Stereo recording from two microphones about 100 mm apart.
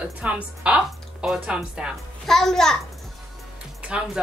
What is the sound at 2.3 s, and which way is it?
Speech, 5° left (ahead or behind).